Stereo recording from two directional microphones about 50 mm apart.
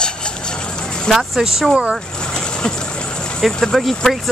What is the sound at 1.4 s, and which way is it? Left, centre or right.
Speech, centre.